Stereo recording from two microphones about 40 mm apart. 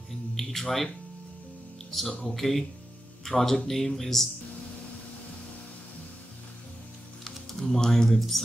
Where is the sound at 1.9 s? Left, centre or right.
Centre.